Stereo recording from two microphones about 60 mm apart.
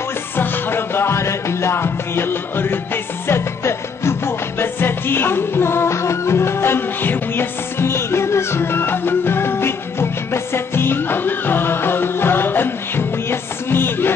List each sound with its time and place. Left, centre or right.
0.4 s music: left